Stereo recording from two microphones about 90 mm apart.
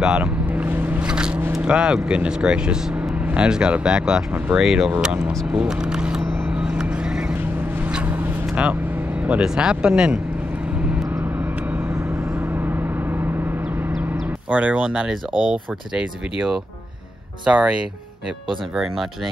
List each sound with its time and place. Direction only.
0.0 s vehicle: 10° right (ahead or behind)
1.6 s speech: 10° right (ahead or behind)
6.5 s vehicle: 10° right (ahead or behind)
9.2 s speech: 10° right (ahead or behind)
12.4 s gong: 25° right (ahead or behind)
14.5 s speech: 15° right (ahead or behind)